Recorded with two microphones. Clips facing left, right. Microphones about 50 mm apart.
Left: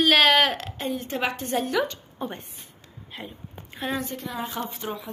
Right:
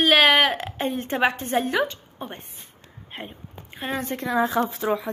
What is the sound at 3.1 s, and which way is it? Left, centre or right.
A woman's voice, right.